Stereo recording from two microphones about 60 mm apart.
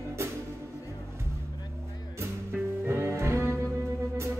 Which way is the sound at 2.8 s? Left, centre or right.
Right.